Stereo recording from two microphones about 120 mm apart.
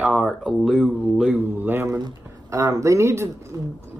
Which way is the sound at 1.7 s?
20° right (ahead or behind).